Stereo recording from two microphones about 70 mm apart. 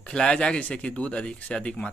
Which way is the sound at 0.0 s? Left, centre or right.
Centre.